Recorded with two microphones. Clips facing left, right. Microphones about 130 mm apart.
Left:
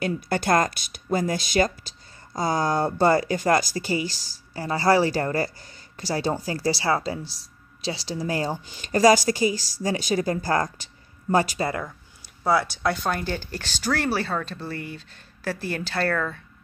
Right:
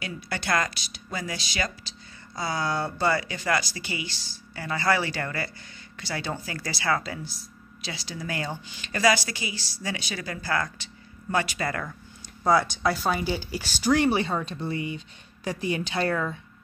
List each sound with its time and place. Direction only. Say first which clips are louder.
0.0 s speech: left 8 dB; 45° left (ahead or behind); by 11.8 s 30° left (ahead or behind)
11.8 s speech: left 1 dB; 5° left (ahead or behind); by 14.6 s 20° right (ahead or behind)
15.5 s a woman's voice: right 3 dB; 5° left (ahead or behind)
16.1 s speech: left 1 dB; 15° right (ahead or behind)